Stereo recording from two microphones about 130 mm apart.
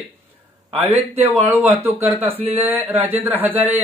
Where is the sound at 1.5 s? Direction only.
15° right (ahead or behind).